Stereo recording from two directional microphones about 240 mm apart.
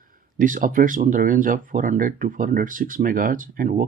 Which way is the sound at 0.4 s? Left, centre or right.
Right.